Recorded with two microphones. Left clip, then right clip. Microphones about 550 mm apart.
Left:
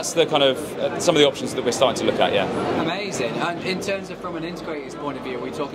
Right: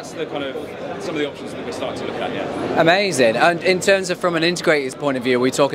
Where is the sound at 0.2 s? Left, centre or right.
Left.